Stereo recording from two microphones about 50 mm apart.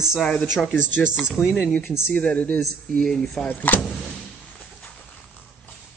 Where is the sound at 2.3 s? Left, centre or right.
Left.